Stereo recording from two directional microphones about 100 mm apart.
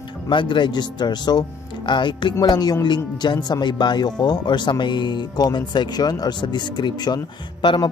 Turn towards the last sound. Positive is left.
turn(degrees=55)  # may be behind; listen again after turning